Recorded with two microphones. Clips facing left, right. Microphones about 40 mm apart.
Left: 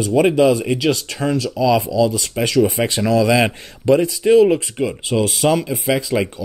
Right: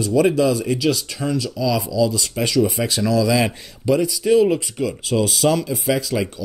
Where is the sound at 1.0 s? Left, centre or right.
Left.